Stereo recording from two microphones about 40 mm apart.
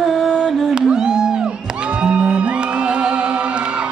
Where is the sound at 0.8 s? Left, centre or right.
Centre.